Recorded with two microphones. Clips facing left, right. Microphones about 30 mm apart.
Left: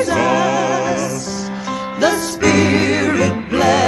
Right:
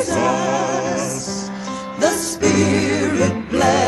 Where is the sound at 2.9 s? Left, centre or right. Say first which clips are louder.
Left 2 dB; centre.